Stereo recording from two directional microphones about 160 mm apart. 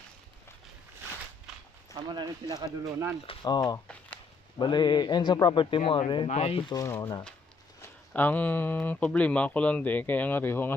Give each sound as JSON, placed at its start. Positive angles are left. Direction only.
{"t": 2.1, "sound": "speech", "side_deg": -25}
{"t": 3.3, "sound": "a man's voice", "side_deg": 25}
{"t": 6.7, "sound": "a man's voice", "side_deg": 20}